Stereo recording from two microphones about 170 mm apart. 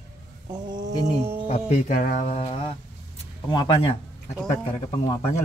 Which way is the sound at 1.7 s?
50° left (ahead or behind).